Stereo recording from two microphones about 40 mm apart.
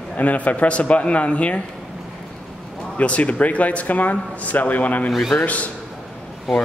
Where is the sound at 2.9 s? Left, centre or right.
Left.